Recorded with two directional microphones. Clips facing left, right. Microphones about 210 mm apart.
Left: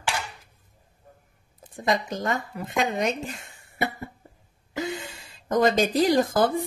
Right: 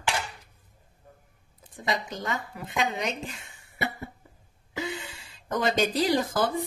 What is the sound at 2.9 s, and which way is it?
Speech, 50° left (ahead or behind).